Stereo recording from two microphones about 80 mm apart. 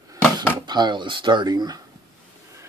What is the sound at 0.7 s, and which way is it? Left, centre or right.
Speech, right.